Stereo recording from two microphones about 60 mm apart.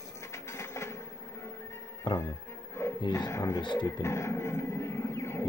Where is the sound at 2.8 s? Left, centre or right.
Left.